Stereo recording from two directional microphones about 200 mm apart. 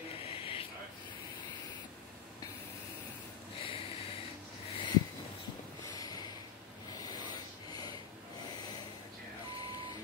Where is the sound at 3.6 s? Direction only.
25° left (ahead or behind).